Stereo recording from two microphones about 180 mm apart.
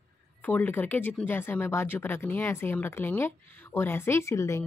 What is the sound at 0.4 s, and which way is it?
Speech, 10° left (ahead or behind).